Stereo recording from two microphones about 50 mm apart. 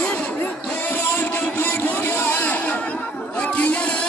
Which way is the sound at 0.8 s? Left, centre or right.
Left.